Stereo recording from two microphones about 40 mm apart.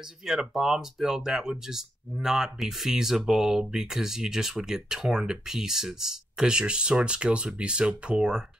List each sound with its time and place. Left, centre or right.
0.3 s speech: centre